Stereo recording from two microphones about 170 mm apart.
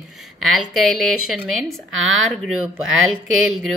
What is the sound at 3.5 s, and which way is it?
Speech, 5° right (ahead or behind).